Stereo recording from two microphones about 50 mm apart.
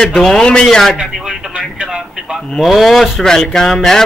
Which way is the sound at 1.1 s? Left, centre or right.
Centre.